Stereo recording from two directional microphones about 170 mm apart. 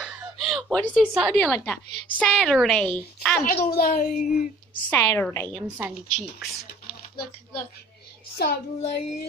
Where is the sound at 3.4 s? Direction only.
60° left (ahead or behind).